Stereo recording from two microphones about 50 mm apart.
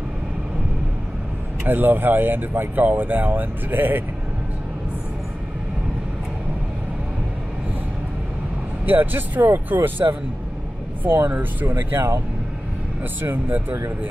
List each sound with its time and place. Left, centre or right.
1.6 s speech: right
8.8 s speech: right
10.0 s speech: right
11.1 s speech: right
13.2 s speech: right